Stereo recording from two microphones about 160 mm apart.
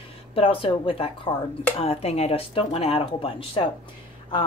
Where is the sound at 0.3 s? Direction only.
35° left (ahead or behind).